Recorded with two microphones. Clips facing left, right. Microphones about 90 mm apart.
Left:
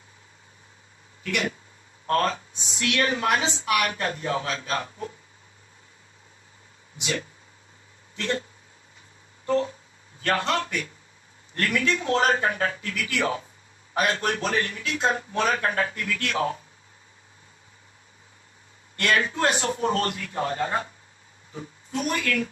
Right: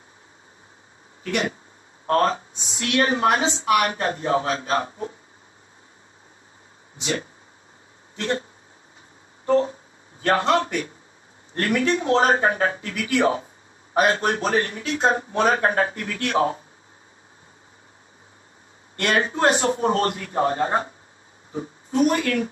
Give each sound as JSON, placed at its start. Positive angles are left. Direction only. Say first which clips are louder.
{"t": 1.2, "sound": "a woman's voice", "louder": "right 3 dB", "side_deg": -35}
{"t": 7.0, "sound": "a woman's voice", "louder": "right 3 dB", "side_deg": -35}
{"t": 9.5, "sound": "a sound", "louder": "right 5 dB", "side_deg": -35}
{"t": 10.2, "sound": "a woman's voice", "louder": "right 5 dB", "side_deg": -30}
{"t": 18.9, "sound": "a woman's voice", "louder": "right 2 dB", "side_deg": -30}